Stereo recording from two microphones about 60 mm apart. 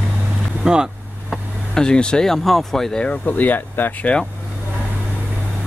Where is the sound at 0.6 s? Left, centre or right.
Centre.